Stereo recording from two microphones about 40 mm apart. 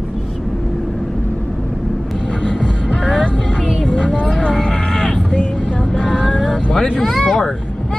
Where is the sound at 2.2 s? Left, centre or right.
Left.